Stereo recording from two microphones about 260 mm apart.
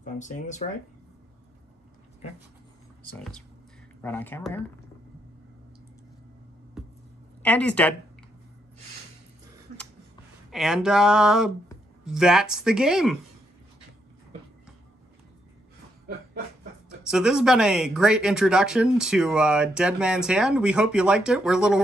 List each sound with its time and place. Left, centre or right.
0.0 s speech: left
4.0 s speech: centre
7.4 s speech: centre
10.5 s speech: centre
17.1 s speech: centre